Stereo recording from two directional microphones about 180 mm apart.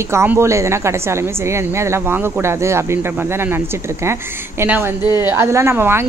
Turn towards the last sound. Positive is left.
turn(degrees=-15)  # may be behind; listen again after turning